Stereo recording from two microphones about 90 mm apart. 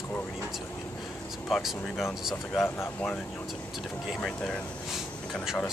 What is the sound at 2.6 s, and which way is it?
Speech, 30° left (ahead or behind).